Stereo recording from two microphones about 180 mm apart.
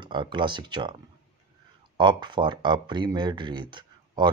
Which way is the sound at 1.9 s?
25° right (ahead or behind).